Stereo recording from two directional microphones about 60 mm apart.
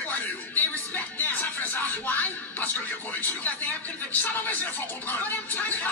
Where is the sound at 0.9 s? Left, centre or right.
Left.